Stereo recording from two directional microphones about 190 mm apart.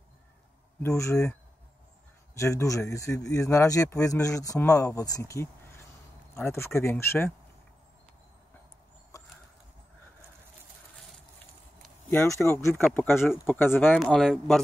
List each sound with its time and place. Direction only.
0.8 s speech: 15° left (ahead or behind)
12.1 s speech: 10° left (ahead or behind)